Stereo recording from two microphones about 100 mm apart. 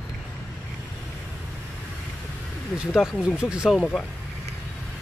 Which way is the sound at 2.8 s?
10° right (ahead or behind).